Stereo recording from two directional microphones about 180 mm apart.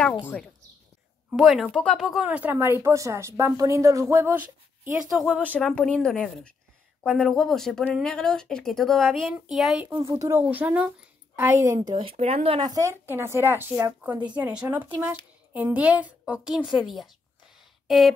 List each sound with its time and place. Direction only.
1.4 s speech: centre (ahead or behind)
5.1 s speech: centre (ahead or behind)
10.0 s speech: 15° right (ahead or behind)
11.9 s speech: 30° right (ahead or behind)
14.4 s a woman's voice: 5° right (ahead or behind)